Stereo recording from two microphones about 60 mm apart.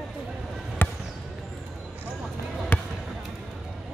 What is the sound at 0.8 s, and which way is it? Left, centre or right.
Basketball bounce, left.